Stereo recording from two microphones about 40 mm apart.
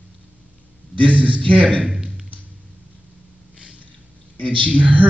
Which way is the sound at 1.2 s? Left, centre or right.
Left.